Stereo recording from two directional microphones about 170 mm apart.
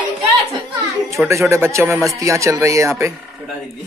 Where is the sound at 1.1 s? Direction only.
15° right (ahead or behind).